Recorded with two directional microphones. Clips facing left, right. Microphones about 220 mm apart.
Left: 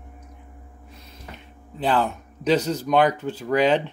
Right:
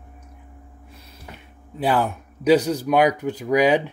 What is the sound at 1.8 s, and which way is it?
Speech, 10° right (ahead or behind).